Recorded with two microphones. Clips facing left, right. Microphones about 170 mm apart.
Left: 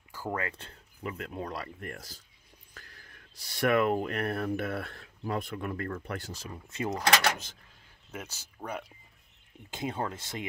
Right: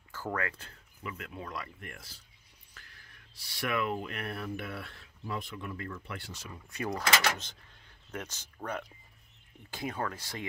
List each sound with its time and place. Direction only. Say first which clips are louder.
0.1 s speech: left 1 dB; 20° left (ahead or behind); by 2.2 s 40° left (ahead or behind)
3.5 s speech: left 7 dB; 45° left (ahead or behind); by 7.1 s 20° left (ahead or behind)
8.1 s speech: right 1 dB; 10° left (ahead or behind)
9.7 s speech: left 2 dB; 20° left (ahead or behind)